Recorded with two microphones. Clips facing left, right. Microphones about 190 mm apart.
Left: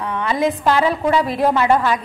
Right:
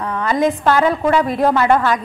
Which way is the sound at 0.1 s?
10° left (ahead or behind).